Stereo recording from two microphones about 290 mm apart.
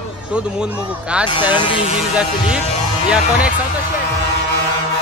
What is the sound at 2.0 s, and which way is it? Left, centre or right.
A man's voice, centre.